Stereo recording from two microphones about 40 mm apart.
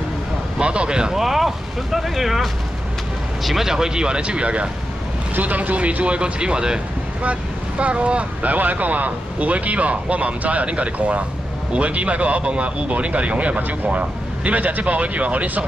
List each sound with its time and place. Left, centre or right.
0.6 s speech: right
1.1 s speech: centre; by 4.6 s right
5.3 s a man's voice: right
7.8 s a man's voice: right